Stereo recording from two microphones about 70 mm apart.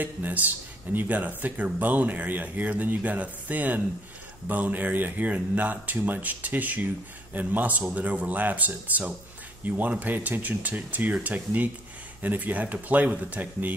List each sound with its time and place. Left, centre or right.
0.0 s speech: right